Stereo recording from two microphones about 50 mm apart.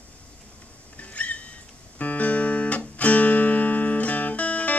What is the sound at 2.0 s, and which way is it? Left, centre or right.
Music, left.